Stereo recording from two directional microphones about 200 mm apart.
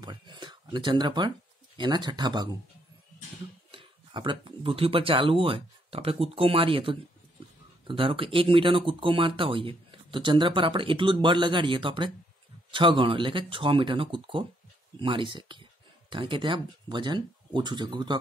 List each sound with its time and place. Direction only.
0.0 s a sound: 20° right (ahead or behind)
1.8 s speech: 20° right (ahead or behind)
3.7 s speech: 25° right (ahead or behind)